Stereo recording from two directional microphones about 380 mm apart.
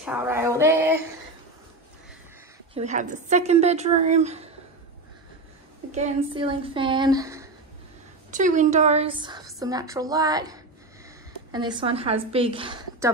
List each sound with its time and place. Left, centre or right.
0.0 s a sound: centre
2.7 s a woman's voice: centre
5.9 s a woman's voice: centre
8.3 s a woman's voice: centre